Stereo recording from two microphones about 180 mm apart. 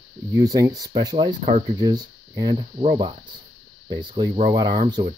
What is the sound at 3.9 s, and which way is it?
Speech, 25° right (ahead or behind).